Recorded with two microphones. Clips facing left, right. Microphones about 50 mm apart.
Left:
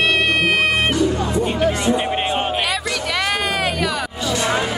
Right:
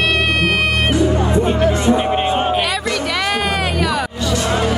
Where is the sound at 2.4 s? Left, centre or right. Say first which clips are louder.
Right 3 dB; centre.